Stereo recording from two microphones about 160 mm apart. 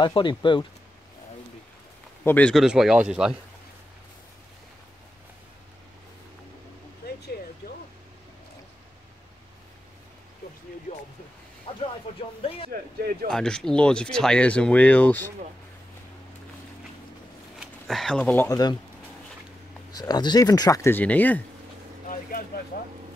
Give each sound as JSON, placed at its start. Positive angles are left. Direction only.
{"t": 0.0, "sound": "speech", "side_deg": 30}
{"t": 2.2, "sound": "speech", "side_deg": 10}
{"t": 2.5, "sound": "speech", "side_deg": -5}
{"t": 7.6, "sound": "vehicle", "side_deg": 80}
{"t": 11.7, "sound": "a sound", "side_deg": 35}
{"t": 13.3, "sound": "speech", "side_deg": 5}
{"t": 17.6, "sound": "speech", "side_deg": 0}
{"t": 19.9, "sound": "speech", "side_deg": 25}